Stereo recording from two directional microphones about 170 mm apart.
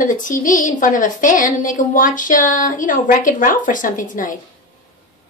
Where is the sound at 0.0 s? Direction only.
50° left (ahead or behind).